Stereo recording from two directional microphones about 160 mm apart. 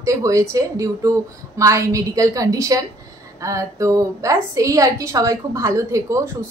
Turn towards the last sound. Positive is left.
turn(degrees=-20)  # may be behind; listen again after turning